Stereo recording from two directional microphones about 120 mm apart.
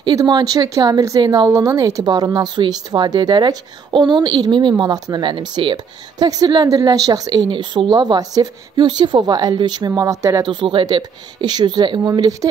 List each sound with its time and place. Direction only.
0.0 s a woman's voice: 35° right (ahead or behind)
10.4 s a woman's voice: 40° right (ahead or behind)